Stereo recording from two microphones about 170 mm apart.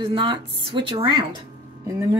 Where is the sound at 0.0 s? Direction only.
25° right (ahead or behind).